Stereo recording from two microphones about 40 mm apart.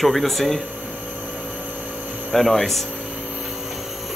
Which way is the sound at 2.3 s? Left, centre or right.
Centre.